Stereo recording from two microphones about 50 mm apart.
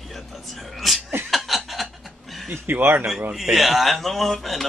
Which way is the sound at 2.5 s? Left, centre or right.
Right.